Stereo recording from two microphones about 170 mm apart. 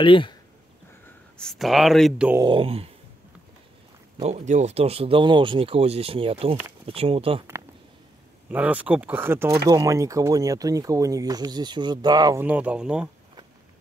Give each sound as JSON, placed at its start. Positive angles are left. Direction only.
{"t": 0.0, "sound": "speech", "side_deg": 30}
{"t": 1.4, "sound": "speech", "side_deg": 0}
{"t": 2.4, "sound": "speech", "side_deg": -30}
{"t": 4.2, "sound": "speech", "side_deg": -45}
{"t": 8.5, "sound": "speech", "side_deg": -10}
{"t": 12.4, "sound": "speech", "side_deg": -10}